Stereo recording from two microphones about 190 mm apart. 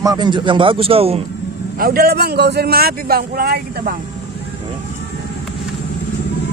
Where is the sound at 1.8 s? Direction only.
50° right (ahead or behind).